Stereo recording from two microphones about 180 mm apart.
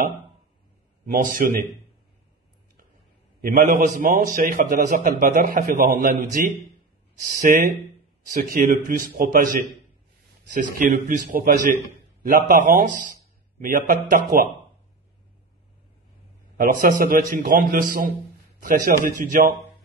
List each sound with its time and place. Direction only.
1.0 s a man's voice: 50° right (ahead or behind)
3.3 s a man's voice: 50° right (ahead or behind)
16.5 s a man's voice: 50° right (ahead or behind)